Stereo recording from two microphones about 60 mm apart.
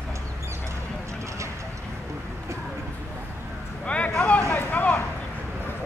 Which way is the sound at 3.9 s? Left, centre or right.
Left.